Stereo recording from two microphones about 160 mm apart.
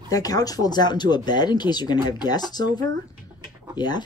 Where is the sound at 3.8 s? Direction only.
25° left (ahead or behind).